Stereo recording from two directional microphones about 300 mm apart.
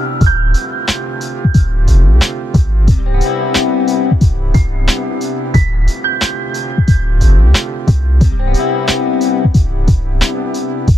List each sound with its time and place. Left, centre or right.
0.2 s music: centre